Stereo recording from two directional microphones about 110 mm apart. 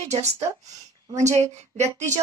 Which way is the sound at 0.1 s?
90° right.